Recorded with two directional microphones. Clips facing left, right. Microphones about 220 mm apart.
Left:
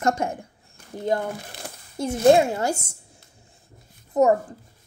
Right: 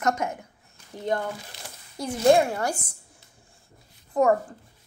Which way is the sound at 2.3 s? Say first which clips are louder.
Left 3 dB; 25° left (ahead or behind).